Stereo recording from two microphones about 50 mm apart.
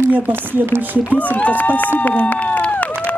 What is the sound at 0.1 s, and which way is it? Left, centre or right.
Speech, right.